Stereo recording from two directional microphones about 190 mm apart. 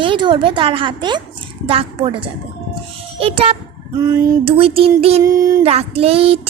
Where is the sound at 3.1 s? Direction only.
30° right (ahead or behind).